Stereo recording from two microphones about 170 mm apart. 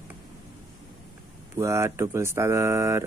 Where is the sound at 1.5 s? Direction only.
15° right (ahead or behind).